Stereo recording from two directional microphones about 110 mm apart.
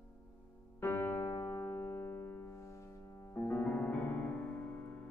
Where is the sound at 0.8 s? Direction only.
20° left (ahead or behind).